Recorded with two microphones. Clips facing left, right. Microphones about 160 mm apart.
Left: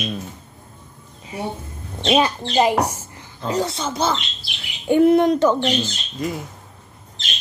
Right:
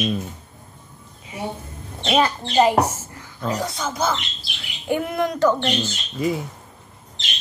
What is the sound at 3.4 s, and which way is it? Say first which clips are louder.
Speech: left 2 dB; 25° left (ahead or behind).